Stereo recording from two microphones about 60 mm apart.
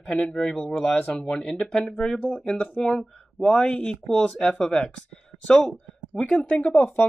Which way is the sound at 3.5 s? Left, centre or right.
Centre.